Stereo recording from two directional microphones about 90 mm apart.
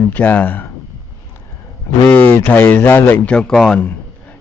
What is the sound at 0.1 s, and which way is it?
Speech, 15° left (ahead or behind).